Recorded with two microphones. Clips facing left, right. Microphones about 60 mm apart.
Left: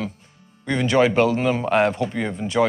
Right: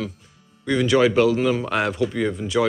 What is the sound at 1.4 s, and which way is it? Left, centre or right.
Speech, left.